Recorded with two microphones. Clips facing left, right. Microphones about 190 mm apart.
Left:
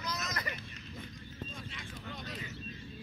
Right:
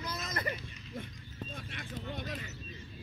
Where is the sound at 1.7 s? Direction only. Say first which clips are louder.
Right 4 dB; 60° right (ahead or behind).